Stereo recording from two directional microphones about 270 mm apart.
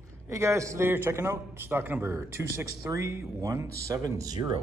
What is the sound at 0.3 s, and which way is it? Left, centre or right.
A man's voice, centre.